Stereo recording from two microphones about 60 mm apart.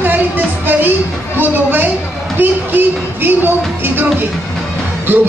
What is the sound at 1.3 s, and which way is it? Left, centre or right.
A woman's voice, right.